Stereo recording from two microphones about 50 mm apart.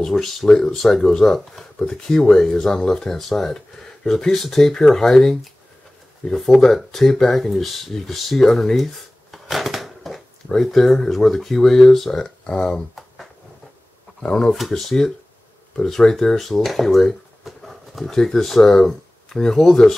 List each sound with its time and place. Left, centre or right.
0.0 s speech: centre
14.5 s speech: centre